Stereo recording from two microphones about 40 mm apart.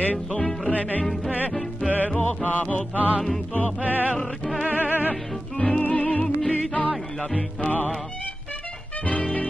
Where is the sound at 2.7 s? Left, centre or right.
Left.